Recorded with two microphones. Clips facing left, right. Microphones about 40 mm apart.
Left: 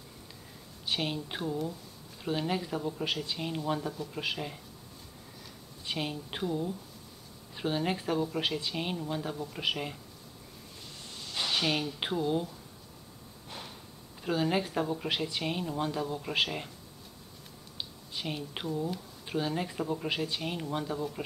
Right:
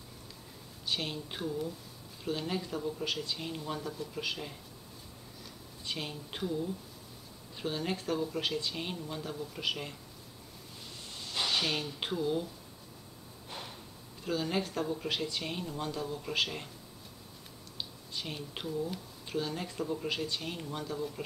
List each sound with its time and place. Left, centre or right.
0.8 s speech: centre
5.9 s speech: centre
11.1 s a sound: centre
12.0 s speech: centre
13.5 s a sound: centre
14.2 s speech: centre
17.7 s speech: centre